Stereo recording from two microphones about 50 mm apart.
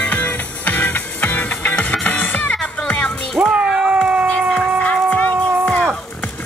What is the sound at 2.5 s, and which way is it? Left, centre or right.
Music, left.